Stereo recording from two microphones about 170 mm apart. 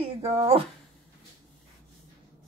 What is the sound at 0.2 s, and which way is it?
Speech, 35° right (ahead or behind).